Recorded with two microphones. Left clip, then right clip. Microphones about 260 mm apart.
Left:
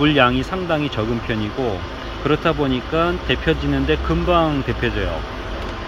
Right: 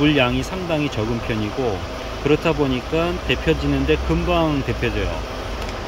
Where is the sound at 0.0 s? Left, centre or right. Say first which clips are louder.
Left 2 dB; centre.